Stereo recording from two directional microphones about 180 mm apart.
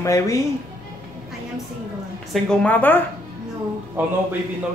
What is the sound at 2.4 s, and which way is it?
Speech, 5° left (ahead or behind).